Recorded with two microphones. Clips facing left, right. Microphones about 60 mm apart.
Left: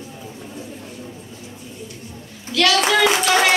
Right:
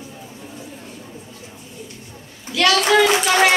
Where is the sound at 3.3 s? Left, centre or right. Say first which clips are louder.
Right 1 dB; centre.